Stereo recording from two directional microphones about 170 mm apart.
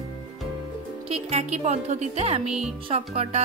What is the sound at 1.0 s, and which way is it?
Music, 35° right (ahead or behind).